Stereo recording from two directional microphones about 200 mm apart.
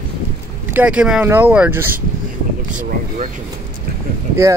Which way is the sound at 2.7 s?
40° right (ahead or behind).